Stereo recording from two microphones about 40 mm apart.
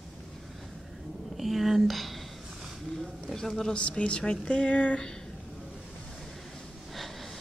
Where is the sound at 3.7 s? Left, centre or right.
Left.